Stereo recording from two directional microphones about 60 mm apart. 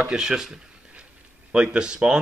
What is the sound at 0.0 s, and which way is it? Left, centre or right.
Speech, centre.